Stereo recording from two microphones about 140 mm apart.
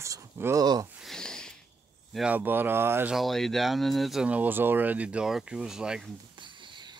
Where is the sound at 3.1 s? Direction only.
Centre (ahead or behind).